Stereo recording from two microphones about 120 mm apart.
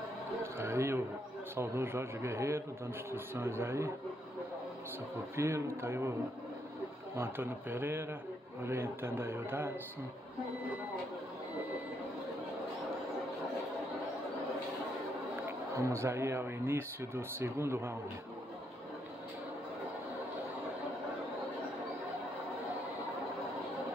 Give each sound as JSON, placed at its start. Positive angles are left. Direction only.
{"t": 0.4, "sound": "a sound", "side_deg": -20}
{"t": 1.6, "sound": "speech", "side_deg": -20}
{"t": 5.3, "sound": "speech", "side_deg": -20}
{"t": 7.2, "sound": "a man's voice", "side_deg": -20}
{"t": 15.7, "sound": "speech", "side_deg": -25}